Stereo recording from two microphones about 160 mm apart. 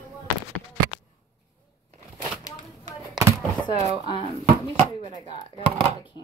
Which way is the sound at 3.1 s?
20° right (ahead or behind).